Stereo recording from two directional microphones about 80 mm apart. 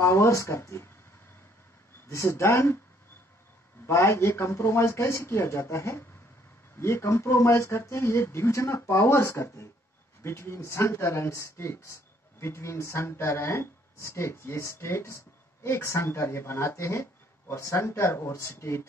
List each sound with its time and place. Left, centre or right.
0.0 s speech: left
2.0 s speech: left
3.8 s speech: left